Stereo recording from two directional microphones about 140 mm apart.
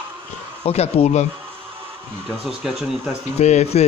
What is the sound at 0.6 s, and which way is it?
Speech, 50° left (ahead or behind).